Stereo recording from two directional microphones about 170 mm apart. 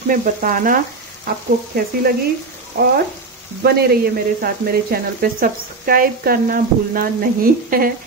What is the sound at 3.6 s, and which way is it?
Speech, 65° right (ahead or behind).